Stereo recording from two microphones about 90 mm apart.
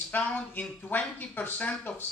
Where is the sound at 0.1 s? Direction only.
15° left (ahead or behind).